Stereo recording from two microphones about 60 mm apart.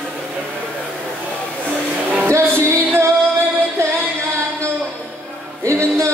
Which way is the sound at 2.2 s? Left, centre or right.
Right.